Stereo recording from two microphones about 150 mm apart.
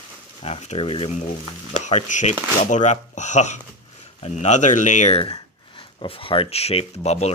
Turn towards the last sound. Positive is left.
turn(degrees=45)  # may be behind; listen again after turning